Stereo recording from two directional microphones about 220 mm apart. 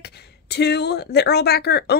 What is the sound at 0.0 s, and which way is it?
Speech, 50° left (ahead or behind).